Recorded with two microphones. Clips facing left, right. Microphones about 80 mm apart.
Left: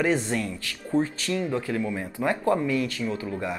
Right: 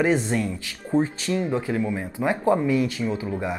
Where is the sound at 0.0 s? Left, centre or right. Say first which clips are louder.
Right 3 dB; centre.